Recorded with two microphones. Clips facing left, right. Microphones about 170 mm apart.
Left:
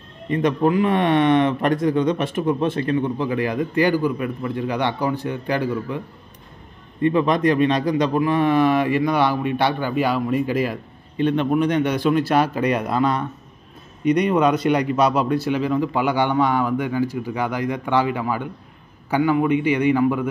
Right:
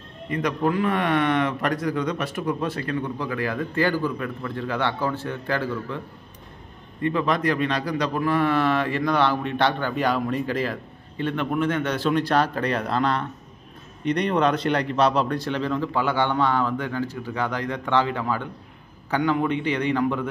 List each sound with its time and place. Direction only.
0.3 s a man's voice: 25° left (ahead or behind)
7.0 s a man's voice: 20° left (ahead or behind)